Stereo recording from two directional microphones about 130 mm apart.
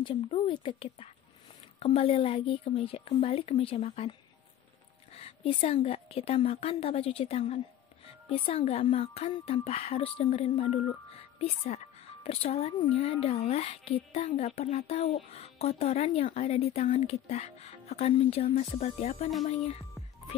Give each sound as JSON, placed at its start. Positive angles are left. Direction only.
{"t": 0.0, "sound": "a woman's voice", "side_deg": 40}
{"t": 5.1, "sound": "a woman's voice", "side_deg": 50}